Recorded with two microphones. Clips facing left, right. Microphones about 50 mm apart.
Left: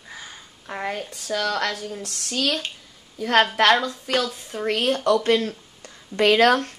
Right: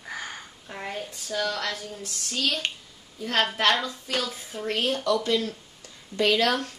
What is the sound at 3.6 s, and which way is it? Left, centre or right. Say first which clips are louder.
Speech: left 5 dB; left.